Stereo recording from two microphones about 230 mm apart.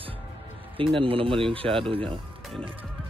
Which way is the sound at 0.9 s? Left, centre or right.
Right.